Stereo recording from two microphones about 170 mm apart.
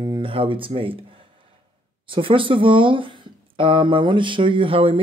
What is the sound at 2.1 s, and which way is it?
Speech, 30° right (ahead or behind).